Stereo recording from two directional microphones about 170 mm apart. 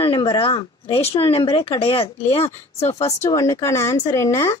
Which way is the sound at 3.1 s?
20° left (ahead or behind).